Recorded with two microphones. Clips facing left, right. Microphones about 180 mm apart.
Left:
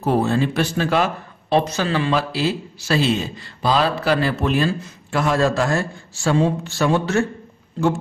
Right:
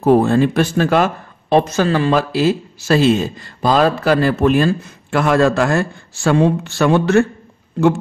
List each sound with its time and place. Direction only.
0.0 s speech: 50° right (ahead or behind)